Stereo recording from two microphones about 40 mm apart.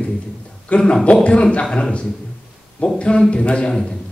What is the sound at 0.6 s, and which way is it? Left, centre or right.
A man's voice, left.